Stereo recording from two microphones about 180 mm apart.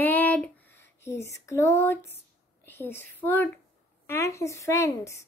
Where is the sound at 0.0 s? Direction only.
10° left (ahead or behind).